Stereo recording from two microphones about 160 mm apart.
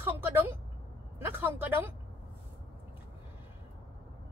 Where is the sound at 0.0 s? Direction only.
15° right (ahead or behind).